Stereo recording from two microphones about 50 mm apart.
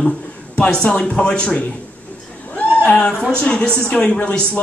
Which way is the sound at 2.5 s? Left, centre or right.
Left.